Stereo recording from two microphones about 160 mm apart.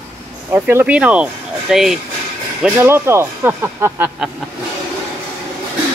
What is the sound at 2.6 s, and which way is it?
Speech, 15° right (ahead or behind).